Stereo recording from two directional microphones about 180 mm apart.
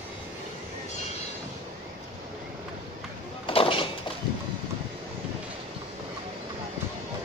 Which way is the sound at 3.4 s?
30° left (ahead or behind).